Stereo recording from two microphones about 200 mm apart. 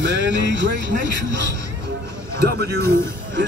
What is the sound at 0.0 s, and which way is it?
Speech, 65° right (ahead or behind).